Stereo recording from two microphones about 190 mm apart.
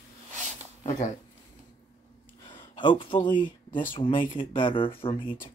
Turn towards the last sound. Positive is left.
turn(degrees=25)  # may be behind; listen again after turning